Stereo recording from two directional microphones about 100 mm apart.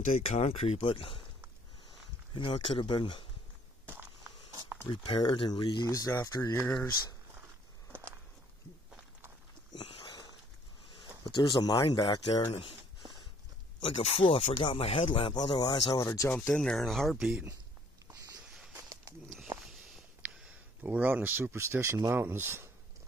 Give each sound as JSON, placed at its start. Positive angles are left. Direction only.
{"t": 0.2, "sound": "speech", "side_deg": 90}
{"t": 4.8, "sound": "speech", "side_deg": 55}
{"t": 5.9, "sound": "speech", "side_deg": 35}
{"t": 9.8, "sound": "a sound", "side_deg": 55}
{"t": 11.3, "sound": "speech", "side_deg": 50}
{"t": 13.7, "sound": "speech", "side_deg": 60}
{"t": 14.8, "sound": "speech", "side_deg": 90}
{"t": 16.0, "sound": "speech", "side_deg": 30}
{"t": 16.5, "sound": "speech", "side_deg": 5}
{"t": 20.2, "sound": "speech", "side_deg": -10}